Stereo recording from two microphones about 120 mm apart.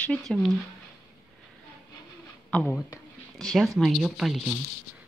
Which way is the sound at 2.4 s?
10° left (ahead or behind).